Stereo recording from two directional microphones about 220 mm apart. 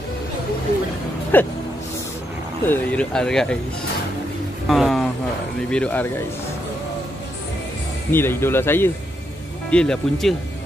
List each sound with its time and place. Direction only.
1.3 s speech: 10° left (ahead or behind)
2.6 s speech: 10° left (ahead or behind)
4.6 s music: centre (ahead or behind)
5.7 s speech: 5° left (ahead or behind)
8.1 s speech: 10° left (ahead or behind)